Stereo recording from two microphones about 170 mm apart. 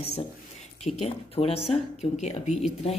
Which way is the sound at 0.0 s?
40° left (ahead or behind).